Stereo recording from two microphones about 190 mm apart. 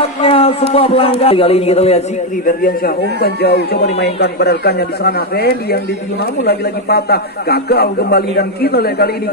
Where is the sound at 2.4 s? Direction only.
50° left (ahead or behind).